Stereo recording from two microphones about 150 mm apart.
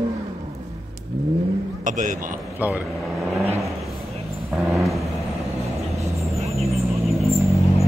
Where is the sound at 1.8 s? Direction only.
60° right (ahead or behind).